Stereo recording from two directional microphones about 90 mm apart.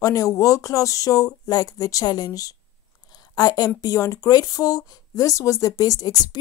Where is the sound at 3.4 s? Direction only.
45° left (ahead or behind).